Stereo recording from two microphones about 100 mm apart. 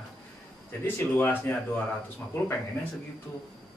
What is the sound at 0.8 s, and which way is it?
Speech, 20° left (ahead or behind).